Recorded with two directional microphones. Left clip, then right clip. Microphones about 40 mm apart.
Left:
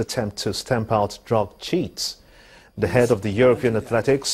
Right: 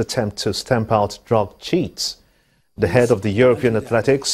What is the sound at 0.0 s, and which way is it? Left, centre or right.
A man's voice, left.